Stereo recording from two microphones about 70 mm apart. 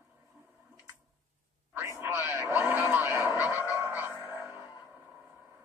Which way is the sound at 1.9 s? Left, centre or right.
Right.